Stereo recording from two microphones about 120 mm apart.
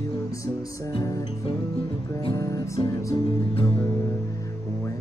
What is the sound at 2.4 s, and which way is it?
Music, 25° left (ahead or behind).